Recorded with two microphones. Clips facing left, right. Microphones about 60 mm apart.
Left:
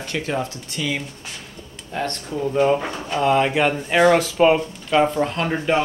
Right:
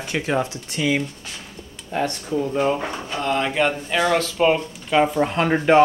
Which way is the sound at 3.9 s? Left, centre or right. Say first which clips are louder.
Left 9 dB; centre.